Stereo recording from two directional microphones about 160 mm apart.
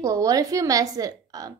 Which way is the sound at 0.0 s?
20° right (ahead or behind).